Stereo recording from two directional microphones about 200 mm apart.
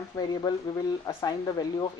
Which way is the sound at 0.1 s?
20° left (ahead or behind).